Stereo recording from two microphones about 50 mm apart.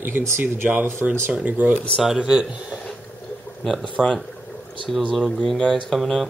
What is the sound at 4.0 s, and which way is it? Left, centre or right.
Speech, centre.